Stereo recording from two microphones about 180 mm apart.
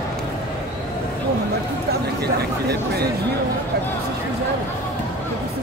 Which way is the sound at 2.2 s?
60° right (ahead or behind).